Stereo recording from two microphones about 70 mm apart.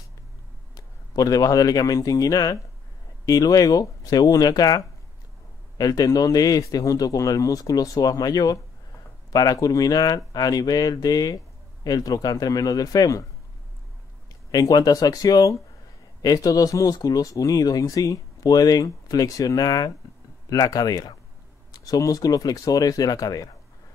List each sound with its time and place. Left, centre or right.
0.7 s a man's voice: left
14.5 s speech: left